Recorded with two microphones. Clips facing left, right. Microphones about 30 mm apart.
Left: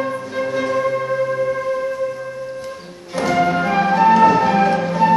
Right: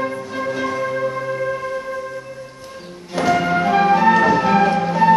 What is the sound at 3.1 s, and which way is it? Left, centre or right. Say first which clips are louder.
Music: even; centre.